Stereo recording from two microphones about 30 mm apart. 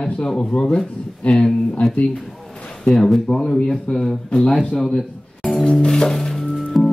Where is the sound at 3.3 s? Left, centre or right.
Left.